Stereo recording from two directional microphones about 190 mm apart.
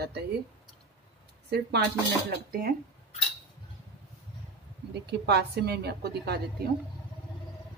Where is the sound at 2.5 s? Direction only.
50° right (ahead or behind).